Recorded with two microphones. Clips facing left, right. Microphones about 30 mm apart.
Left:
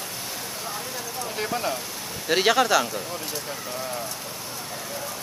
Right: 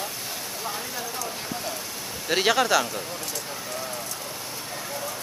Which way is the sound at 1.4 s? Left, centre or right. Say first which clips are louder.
Left 6 dB; left.